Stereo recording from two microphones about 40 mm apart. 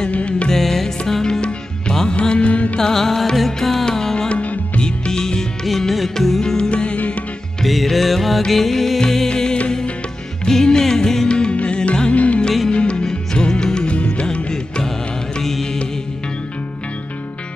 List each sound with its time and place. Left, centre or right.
0.1 s music: left
0.5 s music: centre
1.2 s music: centre
2.8 s music: centre
4.3 s music: left
4.8 s music: centre
5.7 s music: centre
6.4 s music: centre
6.7 s music: left
7.6 s music: centre
9.3 s music: left
11.2 s music: left
15.4 s music: centre